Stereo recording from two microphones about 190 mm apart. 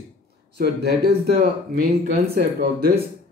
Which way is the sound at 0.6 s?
60° right (ahead or behind).